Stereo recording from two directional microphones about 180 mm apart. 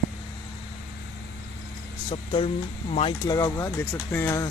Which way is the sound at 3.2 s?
20° left (ahead or behind).